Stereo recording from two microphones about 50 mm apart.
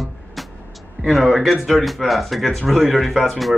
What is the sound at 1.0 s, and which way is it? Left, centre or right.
Speech, centre.